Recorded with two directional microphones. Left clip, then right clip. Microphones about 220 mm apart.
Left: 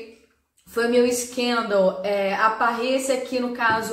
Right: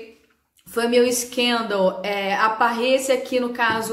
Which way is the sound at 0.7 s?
40° right (ahead or behind).